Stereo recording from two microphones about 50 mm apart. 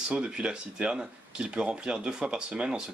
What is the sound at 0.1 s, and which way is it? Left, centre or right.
Speech, centre.